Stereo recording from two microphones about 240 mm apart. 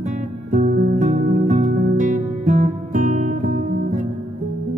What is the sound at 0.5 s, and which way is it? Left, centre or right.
Music, right.